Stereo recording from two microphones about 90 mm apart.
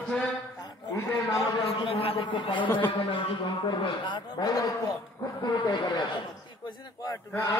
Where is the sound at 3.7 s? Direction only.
60° left (ahead or behind); by 5.0 s 40° left (ahead or behind).